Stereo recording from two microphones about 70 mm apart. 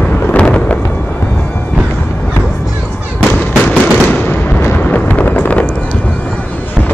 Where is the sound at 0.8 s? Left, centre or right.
Left.